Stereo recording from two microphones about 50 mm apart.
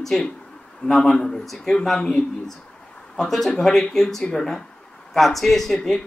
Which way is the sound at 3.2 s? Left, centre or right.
Centre.